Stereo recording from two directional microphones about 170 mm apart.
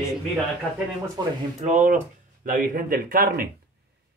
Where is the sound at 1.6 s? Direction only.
45° right (ahead or behind).